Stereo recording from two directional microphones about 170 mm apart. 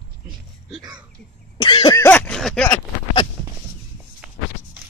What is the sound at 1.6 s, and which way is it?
Cough, 25° left (ahead or behind).